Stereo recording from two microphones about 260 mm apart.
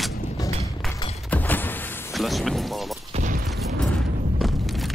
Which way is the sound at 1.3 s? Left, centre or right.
Centre.